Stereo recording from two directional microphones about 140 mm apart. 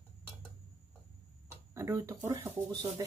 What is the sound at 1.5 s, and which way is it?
Speech, 20° right (ahead or behind).